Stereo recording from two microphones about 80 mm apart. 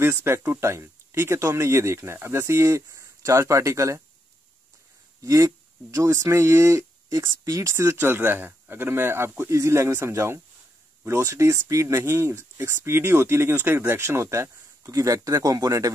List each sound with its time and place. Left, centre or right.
0.0 s speech: right
5.2 s speech: right